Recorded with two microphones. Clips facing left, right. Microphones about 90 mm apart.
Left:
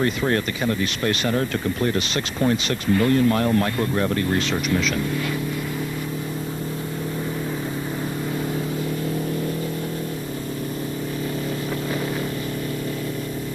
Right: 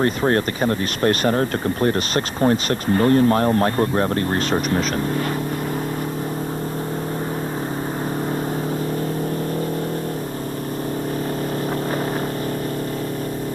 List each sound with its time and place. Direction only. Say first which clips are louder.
0.0 s speech: right 3 dB; 40° right (ahead or behind)